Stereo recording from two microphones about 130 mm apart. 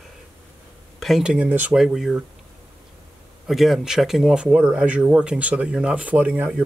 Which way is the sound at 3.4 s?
Centre (ahead or behind).